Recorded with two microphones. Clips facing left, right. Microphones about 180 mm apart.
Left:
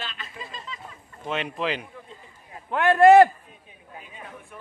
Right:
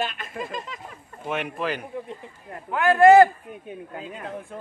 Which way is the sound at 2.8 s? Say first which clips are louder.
Even; 25° left (ahead or behind).